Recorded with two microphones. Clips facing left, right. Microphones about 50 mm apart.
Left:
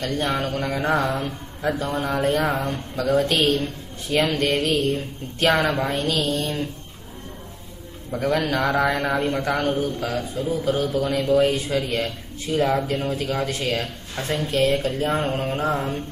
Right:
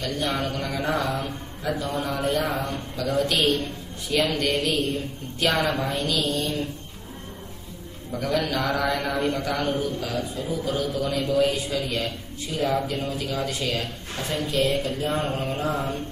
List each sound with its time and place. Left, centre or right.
0.0 s a man's voice: left
8.1 s a man's voice: left